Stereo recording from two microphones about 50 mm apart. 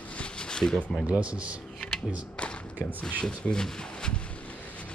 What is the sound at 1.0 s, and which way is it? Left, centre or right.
Speech, right.